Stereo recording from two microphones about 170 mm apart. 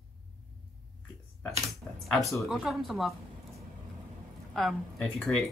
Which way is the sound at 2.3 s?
Centre (ahead or behind).